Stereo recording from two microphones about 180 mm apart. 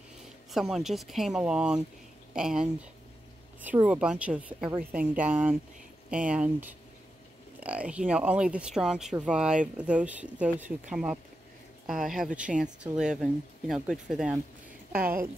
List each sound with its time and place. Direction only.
0.5 s speech: centre (ahead or behind)
14.9 s a woman's voice: 55° right (ahead or behind)